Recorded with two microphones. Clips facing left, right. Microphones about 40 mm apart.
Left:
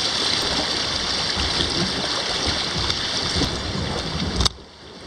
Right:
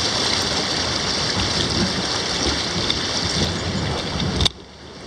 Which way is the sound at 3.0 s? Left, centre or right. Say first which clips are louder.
Right 1 dB; centre.